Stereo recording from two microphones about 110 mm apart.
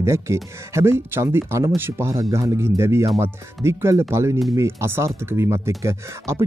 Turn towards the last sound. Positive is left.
turn(degrees=-25)  # may be behind; listen again after turning